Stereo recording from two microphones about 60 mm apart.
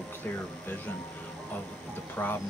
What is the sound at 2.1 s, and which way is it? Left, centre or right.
Speech, left.